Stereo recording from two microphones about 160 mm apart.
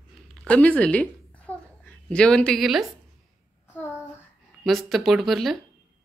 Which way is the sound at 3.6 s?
15° left (ahead or behind).